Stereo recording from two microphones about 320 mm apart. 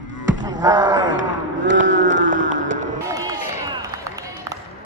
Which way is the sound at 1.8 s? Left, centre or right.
Right.